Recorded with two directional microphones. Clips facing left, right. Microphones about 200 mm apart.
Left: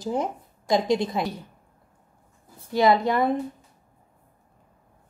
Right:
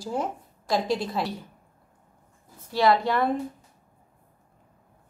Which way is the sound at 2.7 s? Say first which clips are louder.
Left 2 dB; 20° left (ahead or behind).